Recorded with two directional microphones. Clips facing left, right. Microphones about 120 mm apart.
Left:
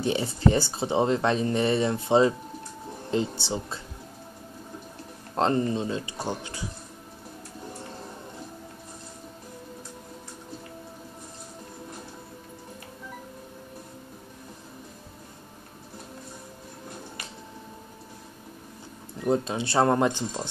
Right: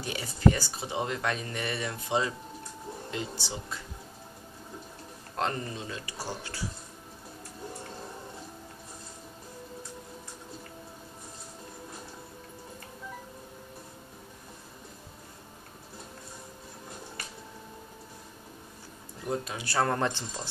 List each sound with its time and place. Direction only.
0.0 s speech: 25° left (ahead or behind)
5.3 s speech: 30° left (ahead or behind)
19.2 s speech: 25° left (ahead or behind)